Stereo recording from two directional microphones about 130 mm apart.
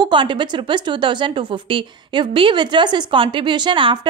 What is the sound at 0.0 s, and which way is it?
A woman's voice, 40° right (ahead or behind).